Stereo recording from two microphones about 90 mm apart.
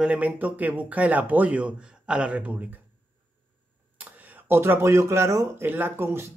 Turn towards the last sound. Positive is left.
turn(degrees=-25)  # may be behind; listen again after turning